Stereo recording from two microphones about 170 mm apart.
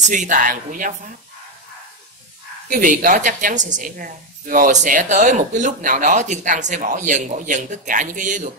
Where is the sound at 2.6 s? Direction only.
50° right (ahead or behind).